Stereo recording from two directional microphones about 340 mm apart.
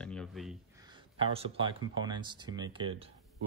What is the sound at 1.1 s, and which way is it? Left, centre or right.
Speech, centre.